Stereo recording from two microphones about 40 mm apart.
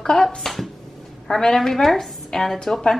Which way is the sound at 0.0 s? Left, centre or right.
Centre.